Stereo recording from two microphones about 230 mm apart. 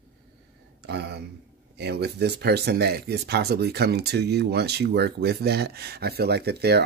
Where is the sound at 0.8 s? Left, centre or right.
Right.